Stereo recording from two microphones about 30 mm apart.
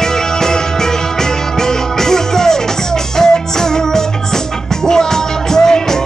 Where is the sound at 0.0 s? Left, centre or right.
Centre.